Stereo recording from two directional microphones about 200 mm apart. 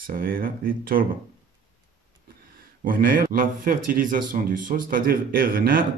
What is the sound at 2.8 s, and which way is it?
Speech, 45° right (ahead or behind).